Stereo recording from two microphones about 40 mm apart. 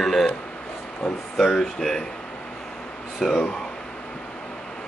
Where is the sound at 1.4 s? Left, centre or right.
Centre.